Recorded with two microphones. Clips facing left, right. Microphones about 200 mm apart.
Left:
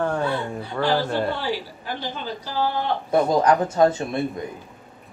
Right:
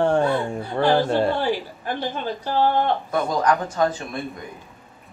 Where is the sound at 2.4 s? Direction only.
55° right (ahead or behind).